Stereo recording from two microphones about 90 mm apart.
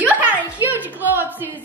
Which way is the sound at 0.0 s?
20° right (ahead or behind).